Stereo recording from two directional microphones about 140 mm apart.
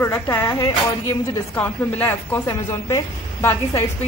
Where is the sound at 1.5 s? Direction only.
15° left (ahead or behind).